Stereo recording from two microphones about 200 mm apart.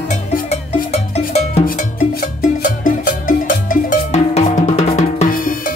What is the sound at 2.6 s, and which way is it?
Music, 45° left (ahead or behind).